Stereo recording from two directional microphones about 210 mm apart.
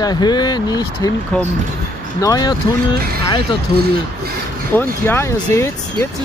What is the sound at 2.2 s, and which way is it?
Speech, 20° left (ahead or behind).